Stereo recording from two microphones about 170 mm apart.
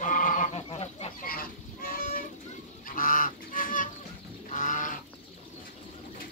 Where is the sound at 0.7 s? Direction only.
35° left (ahead or behind).